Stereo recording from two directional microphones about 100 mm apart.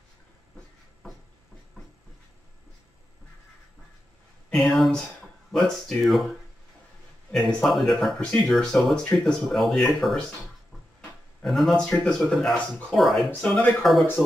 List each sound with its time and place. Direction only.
4.5 s speech: 5° left (ahead or behind)
7.3 s speech: centre (ahead or behind)
11.4 s speech: centre (ahead or behind)
13.3 s speech: 15° left (ahead or behind)